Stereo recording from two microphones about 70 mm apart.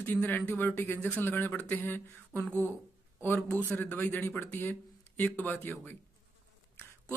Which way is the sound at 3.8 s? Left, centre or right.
Left.